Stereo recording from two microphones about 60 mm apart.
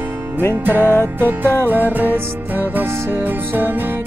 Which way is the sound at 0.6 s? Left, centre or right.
Right.